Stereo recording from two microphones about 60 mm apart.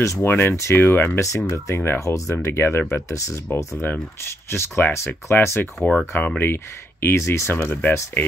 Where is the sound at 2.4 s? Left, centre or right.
Left.